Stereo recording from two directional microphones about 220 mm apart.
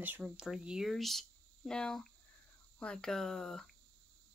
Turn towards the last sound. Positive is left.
turn(degrees=0)  # may be behind; listen again after turning